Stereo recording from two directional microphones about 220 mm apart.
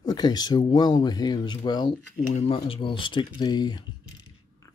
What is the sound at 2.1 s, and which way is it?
Speech, 30° left (ahead or behind).